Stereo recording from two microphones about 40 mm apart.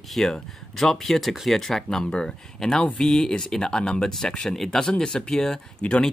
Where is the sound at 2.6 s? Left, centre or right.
Centre.